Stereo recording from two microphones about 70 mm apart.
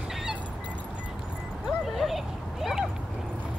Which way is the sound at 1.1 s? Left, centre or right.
Centre.